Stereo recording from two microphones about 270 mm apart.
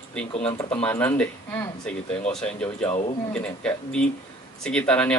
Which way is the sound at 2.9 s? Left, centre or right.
Left.